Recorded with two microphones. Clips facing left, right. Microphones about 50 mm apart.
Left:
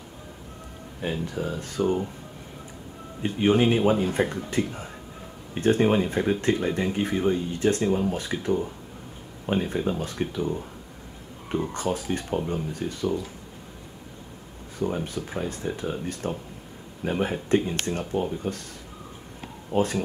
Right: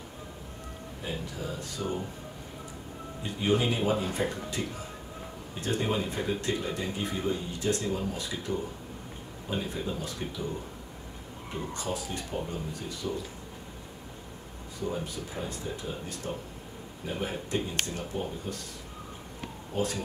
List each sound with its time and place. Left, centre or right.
1.0 s speech: left
3.2 s speech: left
11.5 s speech: left
15.0 s speech: left
19.7 s speech: left